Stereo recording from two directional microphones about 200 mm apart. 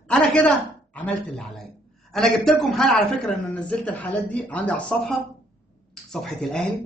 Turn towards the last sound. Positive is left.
turn(degrees=0)  # may be behind; listen again after turning